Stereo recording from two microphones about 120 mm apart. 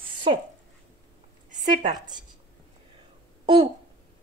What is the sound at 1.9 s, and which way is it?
Speech, 35° right (ahead or behind).